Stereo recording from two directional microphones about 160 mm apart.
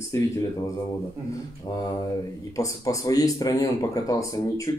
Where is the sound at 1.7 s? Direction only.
25° left (ahead or behind).